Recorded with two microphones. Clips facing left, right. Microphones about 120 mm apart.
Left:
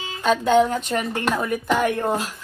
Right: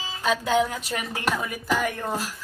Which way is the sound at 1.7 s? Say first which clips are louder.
Left 4 dB; 40° left (ahead or behind).